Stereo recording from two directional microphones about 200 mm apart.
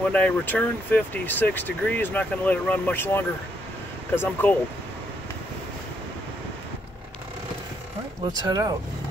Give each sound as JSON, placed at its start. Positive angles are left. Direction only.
{"t": 0.1, "sound": "speech", "side_deg": 5}
{"t": 8.4, "sound": "speech", "side_deg": -20}